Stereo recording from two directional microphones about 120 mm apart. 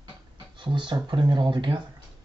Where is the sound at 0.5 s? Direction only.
40° right (ahead or behind).